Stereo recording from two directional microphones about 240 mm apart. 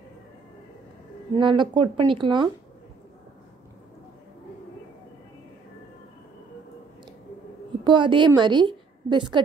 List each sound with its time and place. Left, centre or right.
1.3 s speech: centre
7.8 s a woman's voice: centre